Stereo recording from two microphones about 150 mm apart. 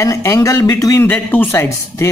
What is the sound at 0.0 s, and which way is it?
A man's voice, 20° left (ahead or behind).